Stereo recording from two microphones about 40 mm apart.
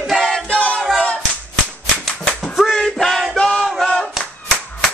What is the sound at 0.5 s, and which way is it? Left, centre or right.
Music, left.